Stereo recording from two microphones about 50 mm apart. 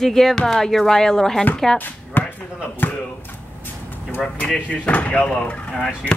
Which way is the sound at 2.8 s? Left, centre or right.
Left.